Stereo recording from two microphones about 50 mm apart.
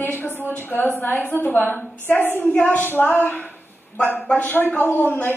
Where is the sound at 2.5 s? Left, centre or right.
Left.